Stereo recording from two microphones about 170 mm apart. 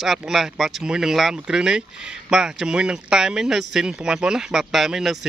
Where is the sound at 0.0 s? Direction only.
Centre (ahead or behind).